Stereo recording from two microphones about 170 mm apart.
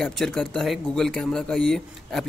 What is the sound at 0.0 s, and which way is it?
A man's voice, 5° left (ahead or behind).